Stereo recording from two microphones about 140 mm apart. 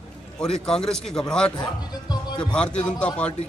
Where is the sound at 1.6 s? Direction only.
30° left (ahead or behind).